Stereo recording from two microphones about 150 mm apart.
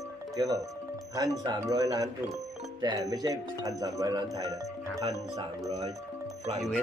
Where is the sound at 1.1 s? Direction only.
25° right (ahead or behind).